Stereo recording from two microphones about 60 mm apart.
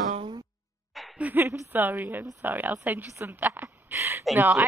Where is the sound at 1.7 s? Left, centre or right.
Right.